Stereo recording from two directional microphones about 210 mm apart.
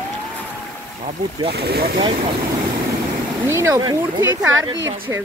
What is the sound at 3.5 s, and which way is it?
Speech, 15° right (ahead or behind).